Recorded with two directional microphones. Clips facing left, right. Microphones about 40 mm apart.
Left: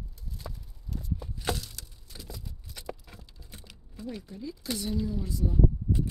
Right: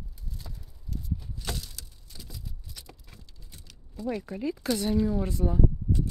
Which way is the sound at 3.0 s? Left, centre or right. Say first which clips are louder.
Left 2 dB; centre.